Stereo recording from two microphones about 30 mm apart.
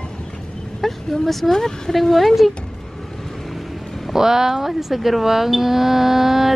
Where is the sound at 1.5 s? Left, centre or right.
Centre.